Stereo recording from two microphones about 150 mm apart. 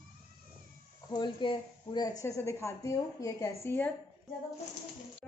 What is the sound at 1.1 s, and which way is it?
Speech, 30° left (ahead or behind).